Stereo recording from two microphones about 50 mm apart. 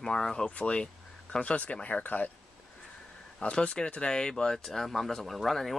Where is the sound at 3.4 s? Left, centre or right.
Left.